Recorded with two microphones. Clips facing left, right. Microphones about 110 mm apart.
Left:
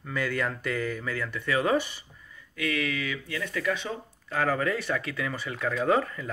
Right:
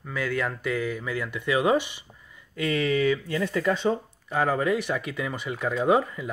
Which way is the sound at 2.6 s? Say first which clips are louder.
Right 6 dB; 30° right (ahead or behind).